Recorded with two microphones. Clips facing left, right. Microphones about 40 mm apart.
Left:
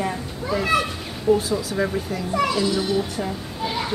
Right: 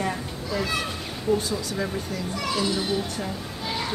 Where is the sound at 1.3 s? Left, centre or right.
Centre.